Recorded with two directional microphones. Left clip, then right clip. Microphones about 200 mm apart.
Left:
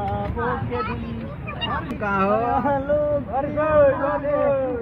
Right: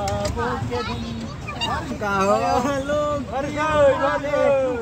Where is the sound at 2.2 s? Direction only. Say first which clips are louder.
Right 2 dB; 70° right (ahead or behind); by 2.8 s 90° right.